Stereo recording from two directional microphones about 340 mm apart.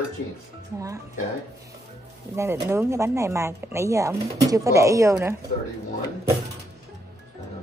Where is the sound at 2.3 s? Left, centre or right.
Centre.